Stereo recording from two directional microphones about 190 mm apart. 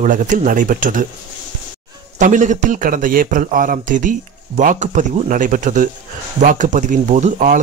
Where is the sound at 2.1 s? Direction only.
40° right (ahead or behind).